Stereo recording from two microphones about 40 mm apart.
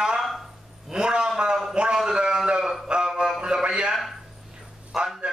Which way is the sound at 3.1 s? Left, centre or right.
Centre.